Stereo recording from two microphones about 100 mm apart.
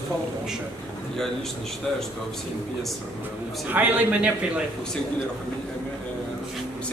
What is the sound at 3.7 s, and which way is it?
Speech, 15° right (ahead or behind).